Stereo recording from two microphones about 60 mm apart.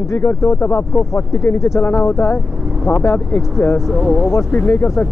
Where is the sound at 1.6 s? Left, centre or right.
Left.